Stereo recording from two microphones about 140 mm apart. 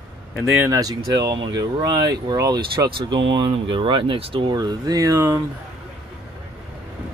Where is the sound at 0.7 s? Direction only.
25° right (ahead or behind).